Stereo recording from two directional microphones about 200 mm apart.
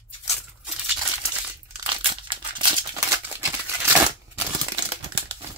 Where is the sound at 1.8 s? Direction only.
25° right (ahead or behind).